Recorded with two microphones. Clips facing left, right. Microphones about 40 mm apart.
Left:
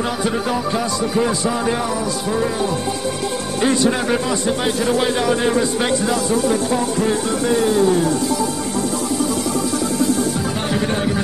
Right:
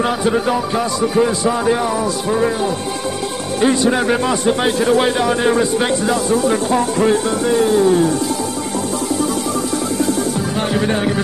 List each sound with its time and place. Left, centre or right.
0.2 s speech: centre
3.6 s speech: centre
4.3 s music: right
5.1 s speech: centre
6.5 s music: right
7.4 s speech: centre